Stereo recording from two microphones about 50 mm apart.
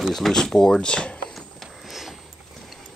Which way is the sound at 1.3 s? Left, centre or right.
Centre.